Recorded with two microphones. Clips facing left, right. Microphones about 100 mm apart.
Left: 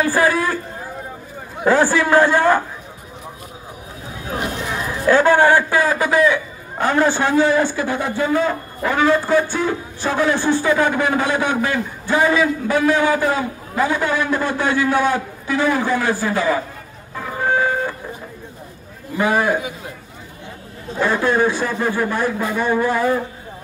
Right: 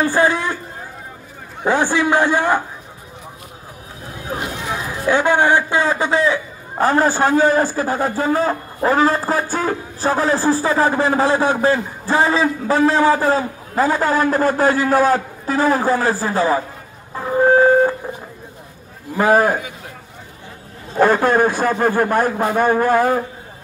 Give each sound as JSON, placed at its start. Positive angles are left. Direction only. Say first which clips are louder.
{"t": 0.0, "sound": "a man's voice", "louder": "even", "side_deg": -25}
{"t": 1.6, "sound": "a man's voice", "louder": "left 2 dB", "side_deg": -20}
{"t": 4.3, "sound": "a man's voice", "louder": "even", "side_deg": -5}
{"t": 17.1, "sound": "a sound", "louder": "right 7 dB", "side_deg": -30}
{"t": 19.1, "sound": "a man's voice", "louder": "right 3 dB", "side_deg": -40}
{"t": 21.0, "sound": "a man's voice", "louder": "right 3 dB", "side_deg": -45}